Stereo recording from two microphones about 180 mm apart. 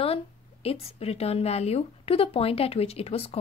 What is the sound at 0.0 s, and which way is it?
A woman's voice, 35° left (ahead or behind).